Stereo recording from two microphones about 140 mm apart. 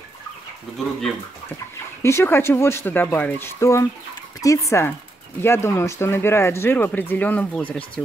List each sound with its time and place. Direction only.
2.0 s speech: 15° left (ahead or behind)